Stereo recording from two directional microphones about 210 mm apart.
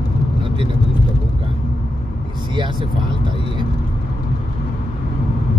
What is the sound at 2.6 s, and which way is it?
Speech, 20° right (ahead or behind).